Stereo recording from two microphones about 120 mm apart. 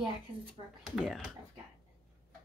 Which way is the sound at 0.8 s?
5° right (ahead or behind).